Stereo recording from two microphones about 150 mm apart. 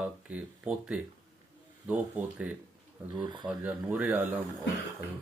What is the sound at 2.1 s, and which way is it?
Speech, 10° right (ahead or behind).